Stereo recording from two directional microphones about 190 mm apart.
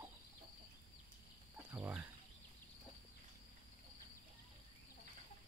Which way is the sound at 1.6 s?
10° right (ahead or behind).